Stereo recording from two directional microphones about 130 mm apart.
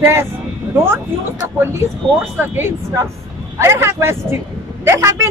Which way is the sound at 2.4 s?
15° right (ahead or behind).